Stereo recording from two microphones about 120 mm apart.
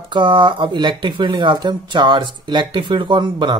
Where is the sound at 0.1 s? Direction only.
40° right (ahead or behind).